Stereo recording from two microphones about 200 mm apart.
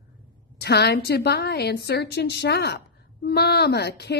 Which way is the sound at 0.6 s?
55° left (ahead or behind).